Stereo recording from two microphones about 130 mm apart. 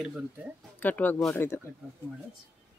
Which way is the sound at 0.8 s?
15° left (ahead or behind).